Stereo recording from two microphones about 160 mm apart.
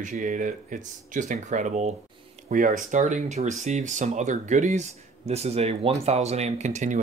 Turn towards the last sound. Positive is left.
turn(degrees=-45)  # may be behind; listen again after turning